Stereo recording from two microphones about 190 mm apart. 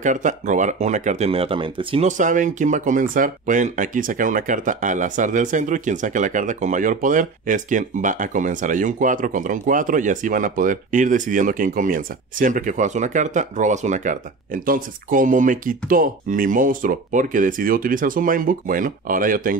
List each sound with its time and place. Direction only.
0.0 s speech: 40° right (ahead or behind)
2.0 s speech: 40° right (ahead or behind)